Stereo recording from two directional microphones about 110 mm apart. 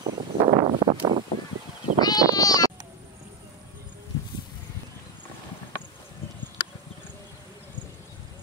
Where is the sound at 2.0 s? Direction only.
35° left (ahead or behind).